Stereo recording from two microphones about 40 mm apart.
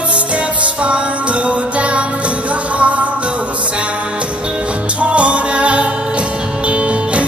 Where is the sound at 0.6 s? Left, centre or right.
Right.